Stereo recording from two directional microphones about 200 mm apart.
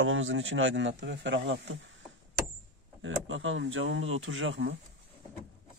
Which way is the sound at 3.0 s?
75° right (ahead or behind).